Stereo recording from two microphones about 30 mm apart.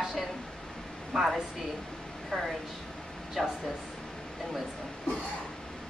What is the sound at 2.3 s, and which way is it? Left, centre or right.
Speech, left.